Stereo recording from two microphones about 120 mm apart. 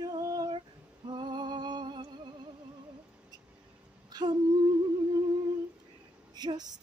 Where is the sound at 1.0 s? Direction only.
40° right (ahead or behind).